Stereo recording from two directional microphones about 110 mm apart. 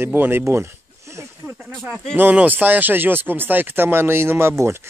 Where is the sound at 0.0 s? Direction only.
20° right (ahead or behind).